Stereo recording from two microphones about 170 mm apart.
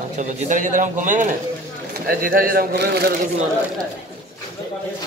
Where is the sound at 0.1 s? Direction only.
45° right (ahead or behind); by 3.2 s 70° right (ahead or behind).